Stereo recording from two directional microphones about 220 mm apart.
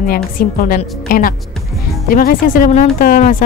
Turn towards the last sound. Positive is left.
turn(degrees=40)  # may be behind; listen again after turning